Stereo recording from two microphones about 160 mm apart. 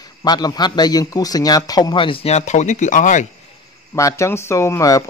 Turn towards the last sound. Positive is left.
turn(degrees=20)  # may be behind; listen again after turning